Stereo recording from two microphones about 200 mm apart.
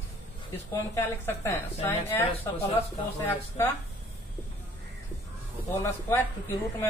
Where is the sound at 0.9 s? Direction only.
10° left (ahead or behind).